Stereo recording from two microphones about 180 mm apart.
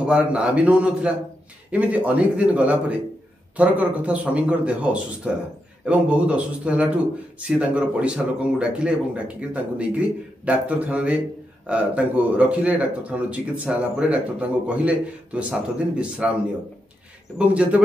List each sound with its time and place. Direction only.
0.0 s speech: 5° right (ahead or behind)
17.4 s speech: 5° right (ahead or behind)